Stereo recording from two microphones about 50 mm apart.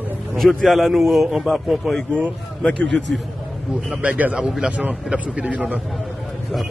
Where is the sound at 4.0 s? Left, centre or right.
Right.